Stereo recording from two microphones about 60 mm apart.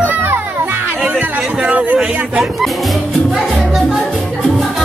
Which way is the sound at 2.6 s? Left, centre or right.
Centre.